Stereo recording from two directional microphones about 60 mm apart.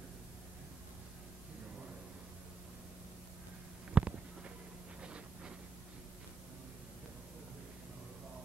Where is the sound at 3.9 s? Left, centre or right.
Centre.